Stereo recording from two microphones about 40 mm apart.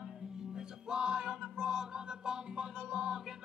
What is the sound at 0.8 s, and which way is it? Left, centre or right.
Music, right.